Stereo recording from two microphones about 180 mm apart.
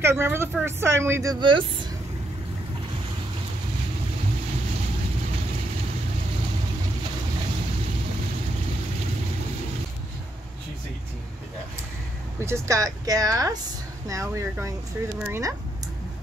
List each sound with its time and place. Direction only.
0.0 s speech: 15° right (ahead or behind)
12.4 s speech: 15° right (ahead or behind)